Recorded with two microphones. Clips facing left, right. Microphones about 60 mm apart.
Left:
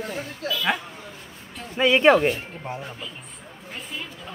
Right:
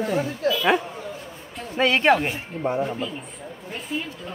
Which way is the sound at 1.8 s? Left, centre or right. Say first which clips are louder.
Left 2 dB; centre.